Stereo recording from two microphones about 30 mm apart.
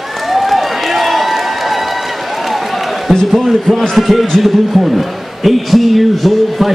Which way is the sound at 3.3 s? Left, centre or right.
Centre.